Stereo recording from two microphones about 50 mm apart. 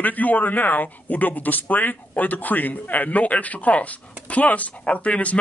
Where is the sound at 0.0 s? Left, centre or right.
Left.